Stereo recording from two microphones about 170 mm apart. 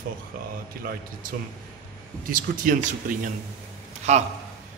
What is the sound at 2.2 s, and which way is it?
Speech, 55° right (ahead or behind).